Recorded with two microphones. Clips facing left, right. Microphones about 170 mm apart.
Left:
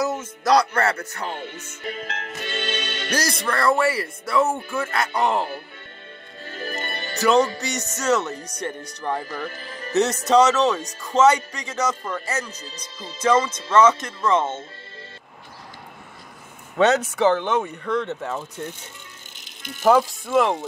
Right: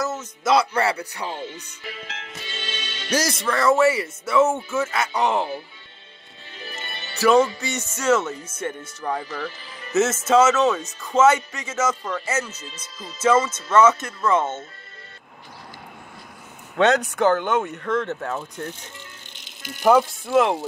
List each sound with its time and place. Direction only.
0.0 s music: 15° left (ahead or behind)
0.4 s speech: 5° right (ahead or behind)
1.3 s speech: 60° left (ahead or behind)
2.0 s music: 40° left (ahead or behind); by 3.1 s 60° left (ahead or behind)
3.1 s speech: centre (ahead or behind)
6.4 s music: 45° left (ahead or behind)
7.2 s speech: centre (ahead or behind)
9.5 s speech: 45° left (ahead or behind)
9.9 s speech: centre (ahead or behind)
12.4 s speech: 35° left (ahead or behind)
13.0 s speech: 5° right (ahead or behind)
16.7 s speech: centre (ahead or behind)